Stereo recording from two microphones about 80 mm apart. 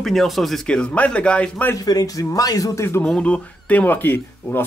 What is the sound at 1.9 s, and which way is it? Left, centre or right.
Speech, left.